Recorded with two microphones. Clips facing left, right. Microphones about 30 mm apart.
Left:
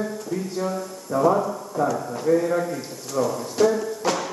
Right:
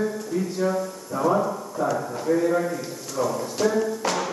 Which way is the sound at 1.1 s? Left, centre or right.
Left.